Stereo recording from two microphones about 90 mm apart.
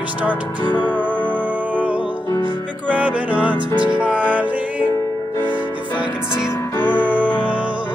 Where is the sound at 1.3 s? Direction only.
20° right (ahead or behind).